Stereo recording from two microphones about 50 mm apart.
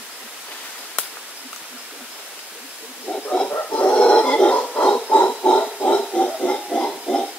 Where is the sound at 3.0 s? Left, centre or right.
Left.